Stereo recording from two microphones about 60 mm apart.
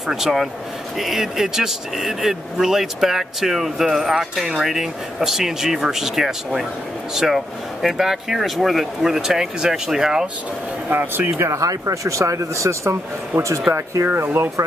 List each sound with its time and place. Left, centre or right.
0.0 s speech: centre
10.9 s speech: right
11.3 s speech: right